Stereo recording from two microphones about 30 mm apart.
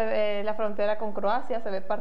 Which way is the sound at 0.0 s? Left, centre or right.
Centre.